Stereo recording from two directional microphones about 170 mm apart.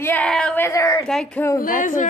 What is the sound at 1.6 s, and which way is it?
Speech, 50° left (ahead or behind).